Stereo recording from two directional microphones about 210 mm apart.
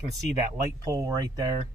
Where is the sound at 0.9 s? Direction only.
15° right (ahead or behind).